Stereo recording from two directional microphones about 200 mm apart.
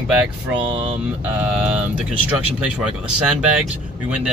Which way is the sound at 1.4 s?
5° right (ahead or behind).